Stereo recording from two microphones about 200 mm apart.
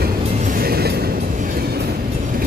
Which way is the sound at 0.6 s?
50° right (ahead or behind).